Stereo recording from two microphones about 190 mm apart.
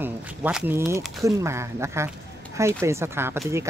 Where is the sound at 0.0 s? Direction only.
5° right (ahead or behind).